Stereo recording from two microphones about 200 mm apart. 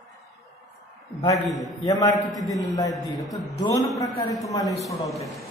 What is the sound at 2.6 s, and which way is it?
A man's voice, 15° left (ahead or behind).